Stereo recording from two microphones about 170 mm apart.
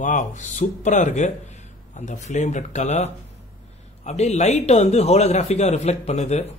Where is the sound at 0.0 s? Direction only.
45° left (ahead or behind).